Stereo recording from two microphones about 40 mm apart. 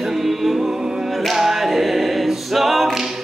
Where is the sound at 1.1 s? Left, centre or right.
Centre.